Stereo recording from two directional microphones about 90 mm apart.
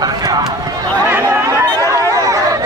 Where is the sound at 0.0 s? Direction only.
45° right (ahead or behind).